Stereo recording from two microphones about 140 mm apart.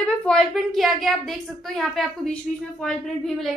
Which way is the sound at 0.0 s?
5° left (ahead or behind).